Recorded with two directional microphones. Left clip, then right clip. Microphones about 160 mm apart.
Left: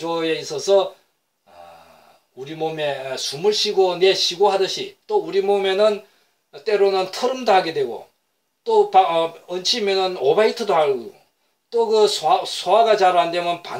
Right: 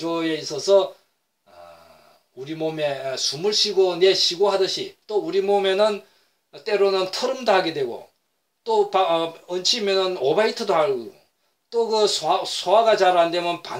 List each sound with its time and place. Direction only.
0.0 s speech: 20° right (ahead or behind)
2.3 s speech: 15° right (ahead or behind)